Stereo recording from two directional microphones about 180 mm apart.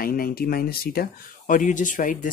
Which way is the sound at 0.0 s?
55° left (ahead or behind).